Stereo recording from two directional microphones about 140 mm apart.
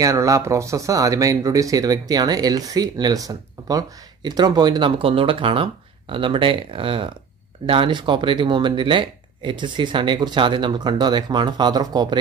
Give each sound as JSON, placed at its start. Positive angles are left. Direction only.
{"t": 0.0, "sound": "speech", "side_deg": -25}